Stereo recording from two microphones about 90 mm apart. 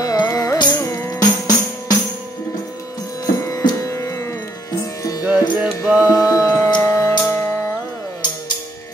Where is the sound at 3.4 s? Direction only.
40° left (ahead or behind).